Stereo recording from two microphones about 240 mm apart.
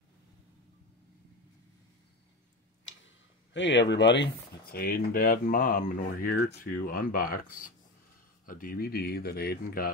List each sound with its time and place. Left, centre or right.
3.5 s speech: left